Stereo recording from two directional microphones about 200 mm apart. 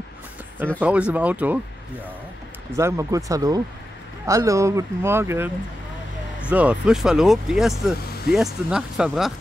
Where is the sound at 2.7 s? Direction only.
15° right (ahead or behind).